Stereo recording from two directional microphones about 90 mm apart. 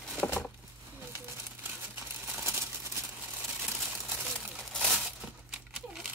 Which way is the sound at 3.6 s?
Centre (ahead or behind).